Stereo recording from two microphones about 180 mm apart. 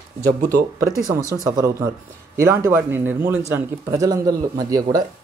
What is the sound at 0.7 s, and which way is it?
Speech, 20° right (ahead or behind).